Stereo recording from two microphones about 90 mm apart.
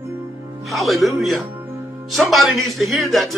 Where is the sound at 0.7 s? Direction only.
Centre (ahead or behind).